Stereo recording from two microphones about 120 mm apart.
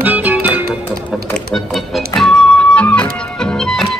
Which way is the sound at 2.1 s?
5° left (ahead or behind).